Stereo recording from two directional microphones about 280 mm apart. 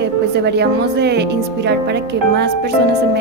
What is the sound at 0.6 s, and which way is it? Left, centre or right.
Speech, right.